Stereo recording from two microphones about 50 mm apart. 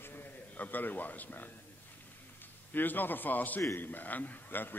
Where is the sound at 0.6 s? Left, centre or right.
Left.